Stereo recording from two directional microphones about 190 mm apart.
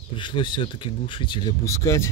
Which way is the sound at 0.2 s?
25° left (ahead or behind).